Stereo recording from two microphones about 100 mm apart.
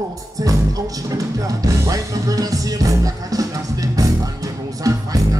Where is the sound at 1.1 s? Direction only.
35° right (ahead or behind).